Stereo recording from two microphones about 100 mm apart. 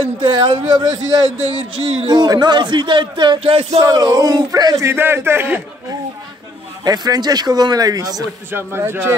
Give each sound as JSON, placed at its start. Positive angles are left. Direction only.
{"t": 0.0, "sound": "a man's voice", "side_deg": -55}
{"t": 3.8, "sound": "a man's voice", "side_deg": -40}
{"t": 4.8, "sound": "speech", "side_deg": -25}
{"t": 6.8, "sound": "a man's voice", "side_deg": -45}
{"t": 8.5, "sound": "speech", "side_deg": -25}